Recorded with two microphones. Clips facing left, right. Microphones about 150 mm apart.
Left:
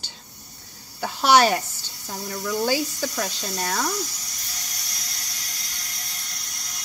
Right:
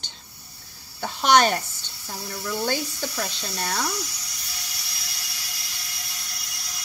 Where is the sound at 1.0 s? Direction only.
5° left (ahead or behind).